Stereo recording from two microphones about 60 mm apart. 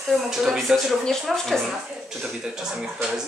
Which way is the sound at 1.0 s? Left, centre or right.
Centre.